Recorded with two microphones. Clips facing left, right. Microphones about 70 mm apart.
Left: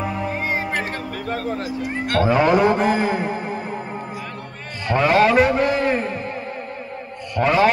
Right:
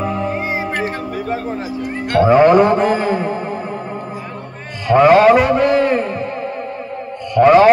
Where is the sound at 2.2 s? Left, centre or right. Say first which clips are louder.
Right 7 dB; right.